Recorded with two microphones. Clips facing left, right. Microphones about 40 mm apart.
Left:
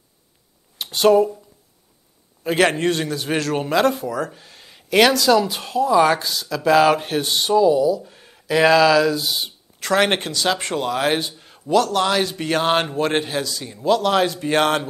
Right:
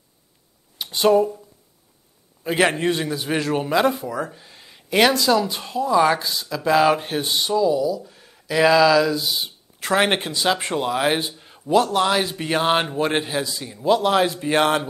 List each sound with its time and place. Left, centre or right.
0.7 s speech: centre
2.5 s speech: centre
4.3 s a sound: centre
5.1 s speech: centre
7.5 s speech: centre
9.8 s speech: centre
11.3 s a sound: centre
11.7 s a man's voice: right
12.0 s speech: centre
13.4 s a man's voice: right
14.4 s speech: centre